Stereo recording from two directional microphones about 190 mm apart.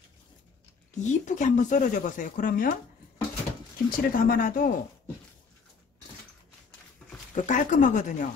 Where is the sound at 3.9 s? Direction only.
50° left (ahead or behind).